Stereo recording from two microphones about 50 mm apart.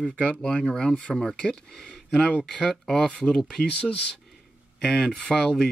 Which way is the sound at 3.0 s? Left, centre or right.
Left.